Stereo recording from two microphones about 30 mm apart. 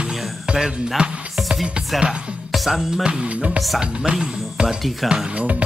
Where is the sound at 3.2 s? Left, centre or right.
Right.